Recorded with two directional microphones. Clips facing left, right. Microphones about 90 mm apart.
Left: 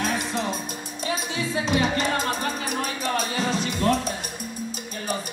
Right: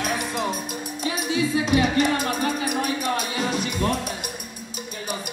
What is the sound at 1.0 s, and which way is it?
Music, 30° left (ahead or behind).